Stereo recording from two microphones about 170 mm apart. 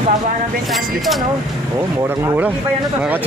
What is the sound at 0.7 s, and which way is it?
Speech, centre (ahead or behind).